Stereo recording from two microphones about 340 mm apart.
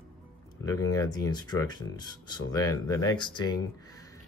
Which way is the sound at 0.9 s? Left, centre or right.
Centre.